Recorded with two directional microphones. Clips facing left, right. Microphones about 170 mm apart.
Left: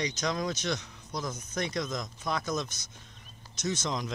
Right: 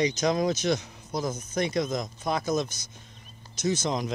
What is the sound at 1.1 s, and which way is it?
Speech, 25° right (ahead or behind).